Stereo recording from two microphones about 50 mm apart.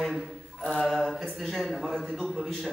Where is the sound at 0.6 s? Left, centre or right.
Left.